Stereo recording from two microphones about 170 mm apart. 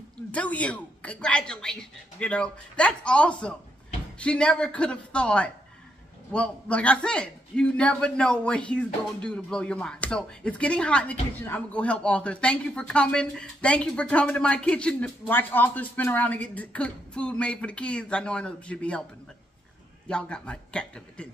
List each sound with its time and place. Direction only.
0.3 s a man's voice: 10° left (ahead or behind)
20.1 s speech: 5° left (ahead or behind)